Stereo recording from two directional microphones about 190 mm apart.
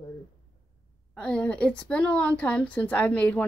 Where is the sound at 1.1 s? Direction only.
5° left (ahead or behind).